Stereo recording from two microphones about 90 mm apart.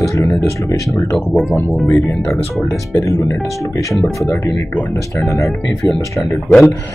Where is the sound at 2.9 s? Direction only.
35° left (ahead or behind).